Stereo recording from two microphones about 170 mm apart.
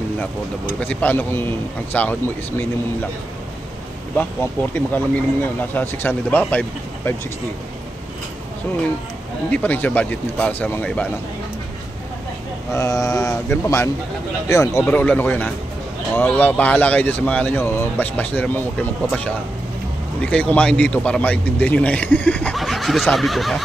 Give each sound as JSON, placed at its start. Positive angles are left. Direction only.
{"t": 0.7, "sound": "a man's voice", "side_deg": 10}
{"t": 4.7, "sound": "a man's voice", "side_deg": 10}
{"t": 9.5, "sound": "a man's voice", "side_deg": 10}
{"t": 12.7, "sound": "mantra", "side_deg": 20}
{"t": 14.5, "sound": "a man's voice", "side_deg": 15}
{"t": 20.2, "sound": "a man's voice", "side_deg": 10}